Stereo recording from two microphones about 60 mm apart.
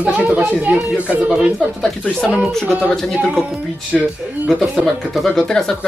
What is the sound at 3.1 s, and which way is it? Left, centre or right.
Speech, centre.